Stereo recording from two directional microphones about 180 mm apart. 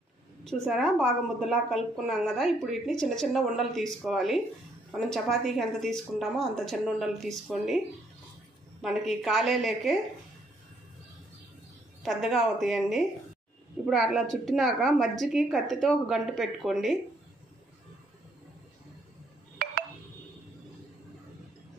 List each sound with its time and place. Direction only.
0.5 s a woman's voice: centre (ahead or behind)
8.8 s a woman's voice: centre (ahead or behind)
12.0 s a woman's voice: centre (ahead or behind)